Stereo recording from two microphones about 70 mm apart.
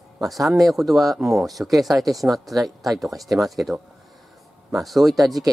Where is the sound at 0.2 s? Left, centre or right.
Centre.